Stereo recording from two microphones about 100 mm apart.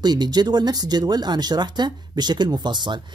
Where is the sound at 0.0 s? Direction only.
45° right (ahead or behind).